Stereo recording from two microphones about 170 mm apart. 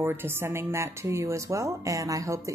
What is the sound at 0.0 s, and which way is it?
Speech, 15° right (ahead or behind).